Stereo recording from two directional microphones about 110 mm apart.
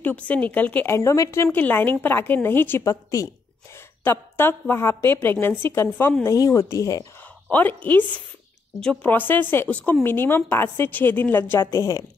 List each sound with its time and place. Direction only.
0.0 s speech: 15° left (ahead or behind)
0.9 s a woman's voice: 30° left (ahead or behind)
7.4 s a woman's voice: 15° left (ahead or behind)
11.7 s a woman's voice: 30° left (ahead or behind)